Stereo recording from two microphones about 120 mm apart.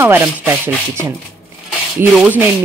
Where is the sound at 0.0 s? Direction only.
20° right (ahead or behind).